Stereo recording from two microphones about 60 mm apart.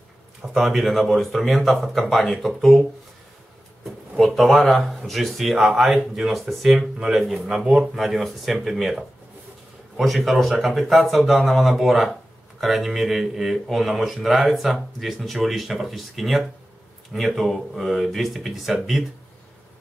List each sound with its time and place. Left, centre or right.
0.5 s speech: centre
3.8 s speech: centre